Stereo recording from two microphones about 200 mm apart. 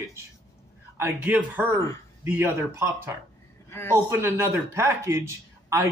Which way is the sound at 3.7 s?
10° left (ahead or behind).